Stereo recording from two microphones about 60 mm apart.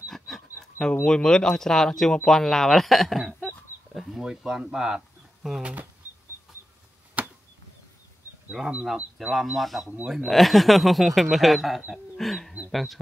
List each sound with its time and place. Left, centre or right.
0.1 s a sound: centre
1.0 s speech: centre
3.4 s a sound: centre
4.5 s speech: centre
5.6 s speech: right
8.5 s speech: centre
9.5 s speech: centre